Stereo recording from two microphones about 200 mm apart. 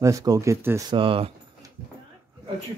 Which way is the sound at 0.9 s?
25° right (ahead or behind).